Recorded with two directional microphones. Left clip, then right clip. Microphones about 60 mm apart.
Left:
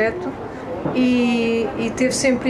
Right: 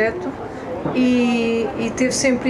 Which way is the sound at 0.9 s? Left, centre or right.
Left.